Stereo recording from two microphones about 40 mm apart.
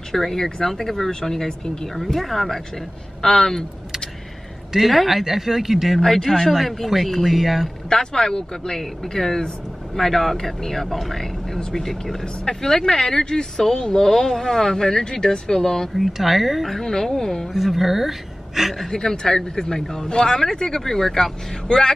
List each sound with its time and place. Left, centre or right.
0.1 s speech: centre
4.7 s speech: centre
5.9 s speech: centre
7.9 s speech: centre
16.0 s speech: centre
17.5 s speech: centre
18.9 s speech: centre